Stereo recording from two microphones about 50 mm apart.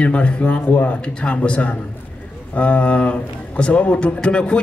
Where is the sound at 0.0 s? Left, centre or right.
Left.